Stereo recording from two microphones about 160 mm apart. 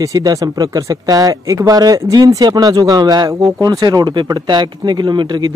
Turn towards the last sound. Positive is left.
turn(degrees=-30)  # may be behind; listen again after turning